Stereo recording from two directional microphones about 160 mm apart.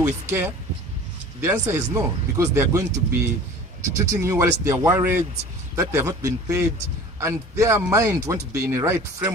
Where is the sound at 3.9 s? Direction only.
20° right (ahead or behind).